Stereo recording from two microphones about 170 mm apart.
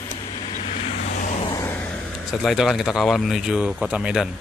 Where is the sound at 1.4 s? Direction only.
20° left (ahead or behind).